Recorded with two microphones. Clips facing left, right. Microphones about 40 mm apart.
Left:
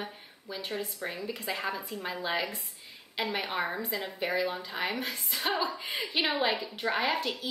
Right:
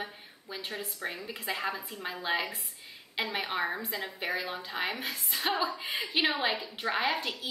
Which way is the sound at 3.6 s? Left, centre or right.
Centre.